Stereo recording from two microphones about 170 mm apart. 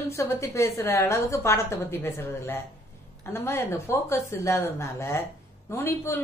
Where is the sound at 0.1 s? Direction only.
15° left (ahead or behind).